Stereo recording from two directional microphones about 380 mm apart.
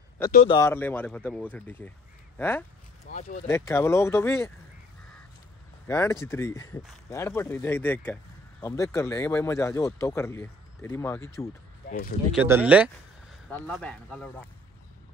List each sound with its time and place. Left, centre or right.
0.3 s speech: centre
0.6 s speech: centre
3.1 s speech: centre
3.4 s speech: centre
5.9 s speech: centre
12.3 s speech: centre